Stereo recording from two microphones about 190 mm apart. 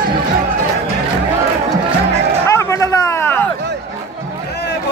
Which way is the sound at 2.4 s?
15° left (ahead or behind).